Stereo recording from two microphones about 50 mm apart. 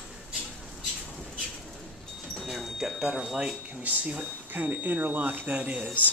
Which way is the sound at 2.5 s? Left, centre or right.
Centre.